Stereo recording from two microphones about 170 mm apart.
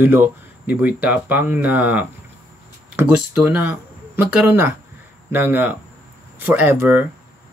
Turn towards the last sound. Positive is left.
turn(degrees=-10)  # may be behind; listen again after turning